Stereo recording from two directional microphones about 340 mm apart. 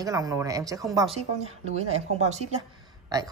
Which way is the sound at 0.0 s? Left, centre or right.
Centre.